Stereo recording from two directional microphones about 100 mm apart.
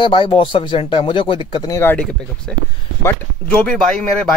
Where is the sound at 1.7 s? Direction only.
25° left (ahead or behind).